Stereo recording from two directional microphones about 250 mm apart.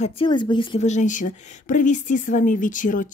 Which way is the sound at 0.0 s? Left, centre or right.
Left.